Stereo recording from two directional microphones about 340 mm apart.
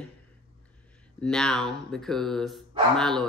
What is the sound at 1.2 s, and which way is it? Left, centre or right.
Speech, centre.